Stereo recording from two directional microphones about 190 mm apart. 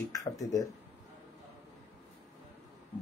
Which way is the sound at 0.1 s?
15° left (ahead or behind).